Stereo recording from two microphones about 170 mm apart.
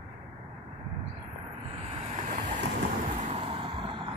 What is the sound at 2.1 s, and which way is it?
Vehicle, 45° right (ahead or behind).